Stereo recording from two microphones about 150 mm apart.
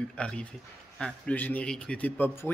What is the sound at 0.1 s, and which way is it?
Speech, 5° left (ahead or behind).